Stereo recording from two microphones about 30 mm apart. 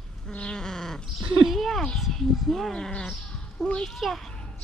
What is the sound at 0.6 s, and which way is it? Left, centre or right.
Cat, centre.